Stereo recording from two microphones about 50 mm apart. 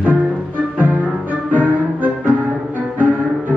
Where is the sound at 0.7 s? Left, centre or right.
Right.